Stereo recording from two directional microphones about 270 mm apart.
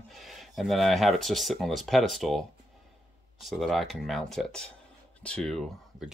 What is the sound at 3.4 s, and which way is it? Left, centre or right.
Speech, centre.